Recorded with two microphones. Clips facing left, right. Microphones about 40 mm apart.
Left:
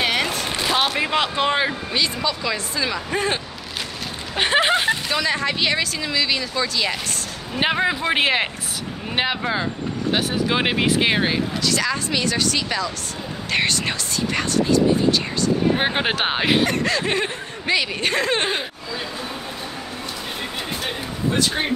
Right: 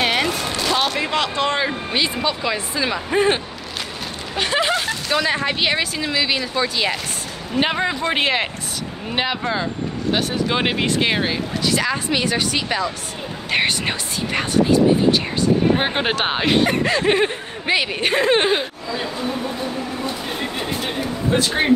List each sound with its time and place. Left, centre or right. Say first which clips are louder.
0.0 s a sound: right 2 dB; centre
0.7 s a sound: even; centre
1.9 s speech: right 2 dB; right
4.4 s speech: left 2 dB; left
5.1 s speech: right 2 dB; centre
7.5 s speech: even; centre
11.6 s speech: right 2 dB; centre
15.8 s speech: right 1 dB; centre
16.6 s speech: right 3 dB; centre
18.5 s speech: right 5 dB; centre
20.3 s chatter: right 3 dB; centre